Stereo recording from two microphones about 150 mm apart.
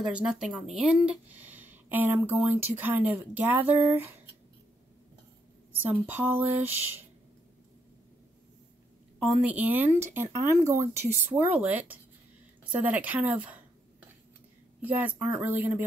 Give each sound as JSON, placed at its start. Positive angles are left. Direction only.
{"t": 0.0, "sound": "speech", "side_deg": -5}
{"t": 5.9, "sound": "speech", "side_deg": -10}
{"t": 9.4, "sound": "speech", "side_deg": -10}
{"t": 14.8, "sound": "speech", "side_deg": -10}